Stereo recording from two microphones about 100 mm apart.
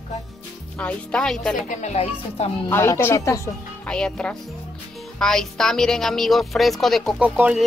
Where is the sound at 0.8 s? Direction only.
10° left (ahead or behind).